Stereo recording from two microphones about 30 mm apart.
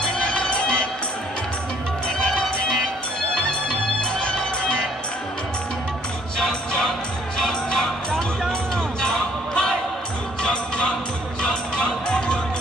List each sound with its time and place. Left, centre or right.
0.0 s music: left
3.6 s music: left
6.3 s music: left
9.0 s basketball bounce: left
10.4 s music: left